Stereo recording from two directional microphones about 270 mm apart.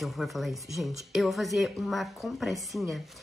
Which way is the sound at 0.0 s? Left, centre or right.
Centre.